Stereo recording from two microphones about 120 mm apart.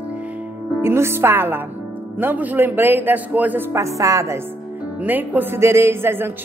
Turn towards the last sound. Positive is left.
turn(degrees=-20)  # may be behind; listen again after turning